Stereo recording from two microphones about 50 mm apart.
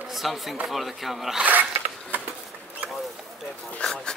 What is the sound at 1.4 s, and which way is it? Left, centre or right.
Speech, right.